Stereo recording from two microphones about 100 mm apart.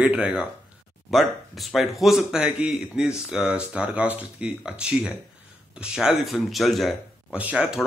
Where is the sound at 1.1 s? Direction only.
Centre (ahead or behind).